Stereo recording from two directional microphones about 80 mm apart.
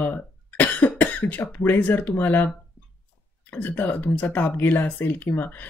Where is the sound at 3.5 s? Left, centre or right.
Left.